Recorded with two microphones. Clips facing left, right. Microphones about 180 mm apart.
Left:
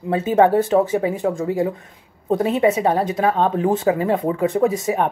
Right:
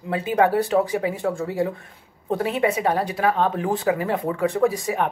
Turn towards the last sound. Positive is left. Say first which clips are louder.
# left 3 dB
turn(degrees=20)  # may be behind; listen again after turning